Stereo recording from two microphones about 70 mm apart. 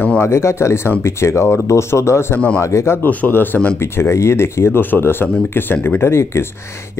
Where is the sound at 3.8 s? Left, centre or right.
Left.